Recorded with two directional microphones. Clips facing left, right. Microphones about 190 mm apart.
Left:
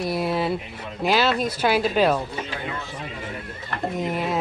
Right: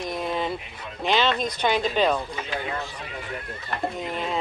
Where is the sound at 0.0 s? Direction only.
5° left (ahead or behind).